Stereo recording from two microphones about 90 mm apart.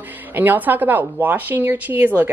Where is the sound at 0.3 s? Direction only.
20° right (ahead or behind).